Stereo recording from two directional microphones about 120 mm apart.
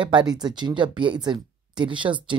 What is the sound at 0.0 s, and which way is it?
Speech, 40° right (ahead or behind).